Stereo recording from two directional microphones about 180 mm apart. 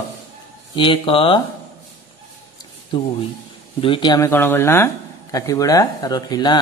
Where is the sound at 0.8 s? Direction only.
30° left (ahead or behind).